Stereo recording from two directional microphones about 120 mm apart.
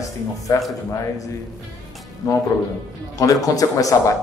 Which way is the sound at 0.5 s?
30° left (ahead or behind).